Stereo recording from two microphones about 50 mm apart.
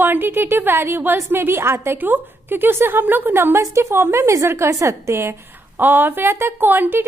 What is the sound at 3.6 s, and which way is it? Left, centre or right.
A woman's voice, right.